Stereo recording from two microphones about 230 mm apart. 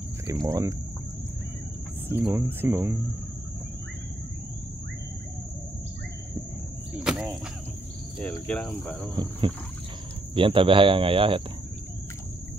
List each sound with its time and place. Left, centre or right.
0.3 s speech: centre
2.0 s speech: centre
7.0 s speech: centre
9.1 s speech: centre